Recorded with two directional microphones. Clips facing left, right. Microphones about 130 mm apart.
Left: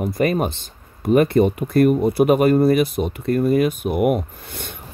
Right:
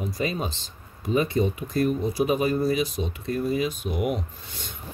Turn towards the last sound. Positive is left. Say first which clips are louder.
# left 6 dB
turn(degrees=60)  # may be behind; listen again after turning